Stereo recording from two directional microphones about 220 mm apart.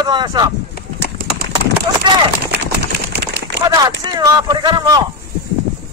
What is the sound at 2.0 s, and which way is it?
Speech, 20° right (ahead or behind).